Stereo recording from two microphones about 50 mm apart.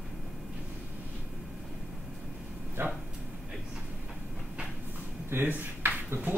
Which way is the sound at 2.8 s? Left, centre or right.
Right.